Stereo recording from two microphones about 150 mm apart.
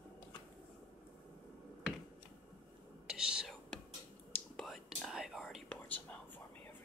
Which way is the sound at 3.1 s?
5° right (ahead or behind).